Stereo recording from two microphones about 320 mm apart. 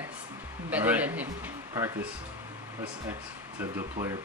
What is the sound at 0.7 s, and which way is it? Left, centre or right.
A man's voice, centre.